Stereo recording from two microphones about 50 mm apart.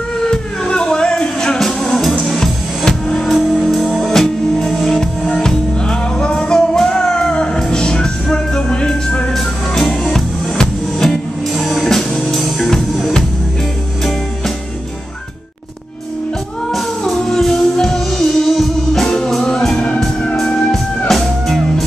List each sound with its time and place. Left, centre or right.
0.2 s a sound: centre
1.6 s music: centre
9.3 s music: centre
16.7 s music: centre